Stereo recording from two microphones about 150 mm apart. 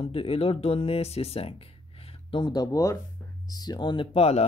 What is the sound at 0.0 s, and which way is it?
Speech, 40° left (ahead or behind).